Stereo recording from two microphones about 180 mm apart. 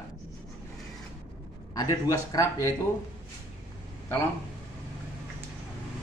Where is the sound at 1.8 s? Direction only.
15° left (ahead or behind).